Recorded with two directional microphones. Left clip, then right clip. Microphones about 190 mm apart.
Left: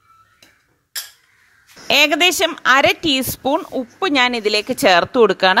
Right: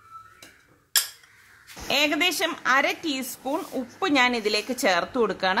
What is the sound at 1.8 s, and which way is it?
Speech, 40° left (ahead or behind).